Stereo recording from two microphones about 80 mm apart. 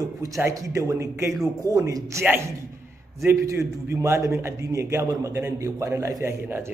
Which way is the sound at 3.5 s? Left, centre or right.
Right.